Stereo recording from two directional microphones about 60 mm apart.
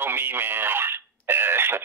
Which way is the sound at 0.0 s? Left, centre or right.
Right.